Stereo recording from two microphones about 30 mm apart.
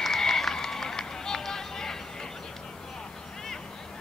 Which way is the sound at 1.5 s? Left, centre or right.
Centre.